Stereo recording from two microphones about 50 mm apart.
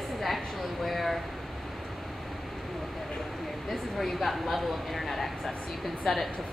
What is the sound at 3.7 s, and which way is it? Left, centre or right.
A woman's voice, centre.